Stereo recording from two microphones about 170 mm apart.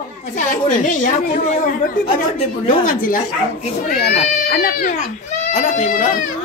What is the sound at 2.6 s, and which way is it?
Speech, 55° left (ahead or behind).